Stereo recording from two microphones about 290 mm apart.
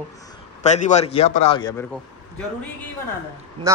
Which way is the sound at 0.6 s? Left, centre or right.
Left.